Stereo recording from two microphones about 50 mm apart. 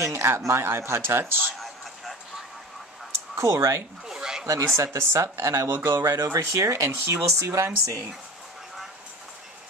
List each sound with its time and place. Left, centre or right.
0.1 s speech: right
3.3 s speech: right
4.1 s a sound: centre
4.7 s speech: right
5.9 s speech: right